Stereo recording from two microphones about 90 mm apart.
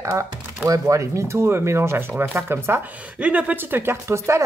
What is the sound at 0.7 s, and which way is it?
Speech, 35° right (ahead or behind).